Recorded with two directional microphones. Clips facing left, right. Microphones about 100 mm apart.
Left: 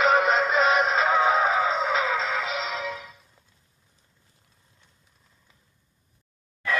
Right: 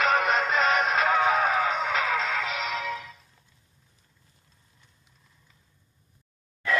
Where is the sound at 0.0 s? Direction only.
5° left (ahead or behind).